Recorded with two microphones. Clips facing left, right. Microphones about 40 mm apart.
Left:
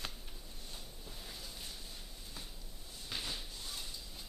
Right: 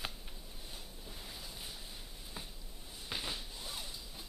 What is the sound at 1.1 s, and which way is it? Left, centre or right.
Ocean, centre.